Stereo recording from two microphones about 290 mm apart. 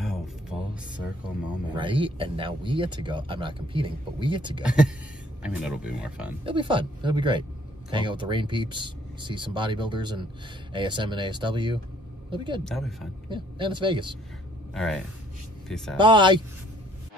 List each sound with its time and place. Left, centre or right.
0.0 s a sound: centre
1.7 s speech: centre
4.6 s speech: centre
6.4 s speech: centre
14.7 s speech: centre
16.0 s speech: centre